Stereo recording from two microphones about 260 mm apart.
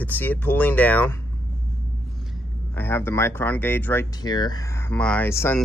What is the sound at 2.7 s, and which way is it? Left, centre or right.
Speech, centre.